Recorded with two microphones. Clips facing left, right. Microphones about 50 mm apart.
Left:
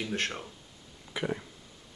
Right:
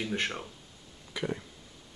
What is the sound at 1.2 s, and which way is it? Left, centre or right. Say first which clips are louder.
Speech: left 1 dB; centre.